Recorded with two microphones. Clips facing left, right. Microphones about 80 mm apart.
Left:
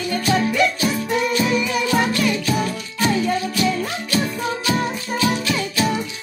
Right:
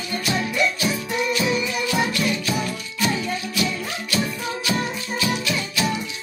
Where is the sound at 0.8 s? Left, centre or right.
Left.